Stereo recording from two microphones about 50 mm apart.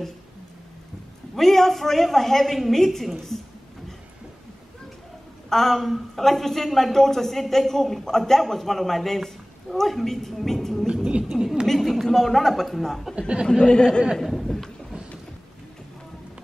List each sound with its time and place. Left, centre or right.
1.3 s a woman's voice: centre
5.5 s a woman's voice: centre
11.2 s a sound: centre
11.6 s a woman's voice: centre
13.5 s speech: centre
14.2 s a sound: centre